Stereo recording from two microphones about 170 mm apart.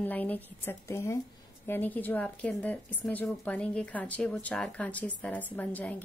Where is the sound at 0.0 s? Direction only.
10° left (ahead or behind).